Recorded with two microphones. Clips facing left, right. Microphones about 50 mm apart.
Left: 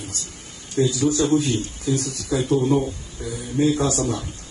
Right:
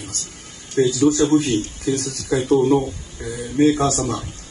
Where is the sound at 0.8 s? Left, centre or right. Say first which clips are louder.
Right 4 dB; right.